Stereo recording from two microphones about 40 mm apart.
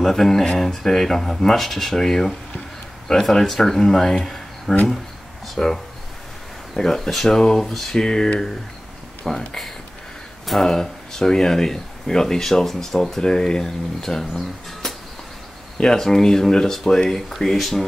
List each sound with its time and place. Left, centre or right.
0.0 s speech: centre
5.6 s speech: centre
10.4 s speech: centre
10.7 s speech: centre
13.2 s speech: centre
15.8 s speech: centre